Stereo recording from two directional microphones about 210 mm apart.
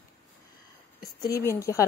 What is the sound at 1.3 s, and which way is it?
Speech, 15° left (ahead or behind).